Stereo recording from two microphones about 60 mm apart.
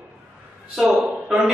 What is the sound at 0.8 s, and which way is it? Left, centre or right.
Speech, centre.